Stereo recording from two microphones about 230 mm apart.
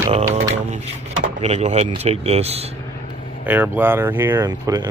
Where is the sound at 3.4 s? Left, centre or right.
Centre.